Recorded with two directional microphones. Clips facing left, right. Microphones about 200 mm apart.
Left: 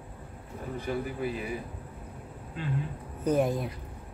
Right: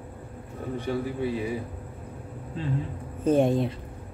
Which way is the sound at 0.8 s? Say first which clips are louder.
Right 3 dB; 30° right (ahead or behind).